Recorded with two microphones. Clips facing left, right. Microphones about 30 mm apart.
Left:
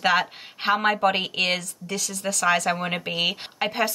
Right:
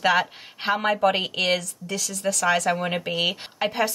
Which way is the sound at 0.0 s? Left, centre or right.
Centre.